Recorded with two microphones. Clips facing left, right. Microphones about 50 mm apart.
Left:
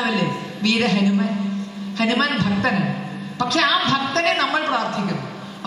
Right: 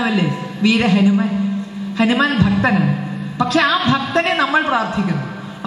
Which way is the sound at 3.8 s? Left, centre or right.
Centre.